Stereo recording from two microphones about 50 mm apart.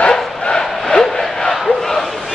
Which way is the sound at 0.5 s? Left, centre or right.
Centre.